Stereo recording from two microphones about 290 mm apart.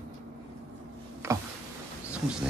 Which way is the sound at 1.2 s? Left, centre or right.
Centre.